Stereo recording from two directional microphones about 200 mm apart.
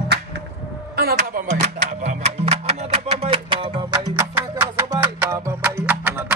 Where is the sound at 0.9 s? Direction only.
45° right (ahead or behind).